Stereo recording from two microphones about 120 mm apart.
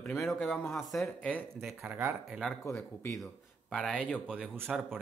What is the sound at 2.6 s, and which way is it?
Speech, 25° left (ahead or behind).